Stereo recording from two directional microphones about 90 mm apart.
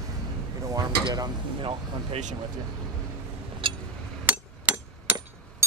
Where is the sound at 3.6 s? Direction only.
70° right (ahead or behind).